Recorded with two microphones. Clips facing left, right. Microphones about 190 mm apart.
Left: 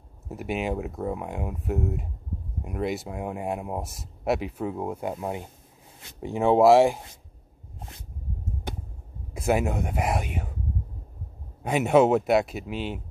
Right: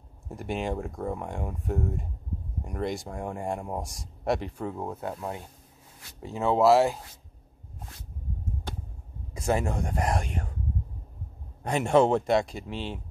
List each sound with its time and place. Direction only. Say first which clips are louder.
0.3 s speech: left 2 dB; 5° left (ahead or behind)
9.3 s speech: left 3 dB; 5° left (ahead or behind)
11.6 s speech: left 2 dB; 5° left (ahead or behind)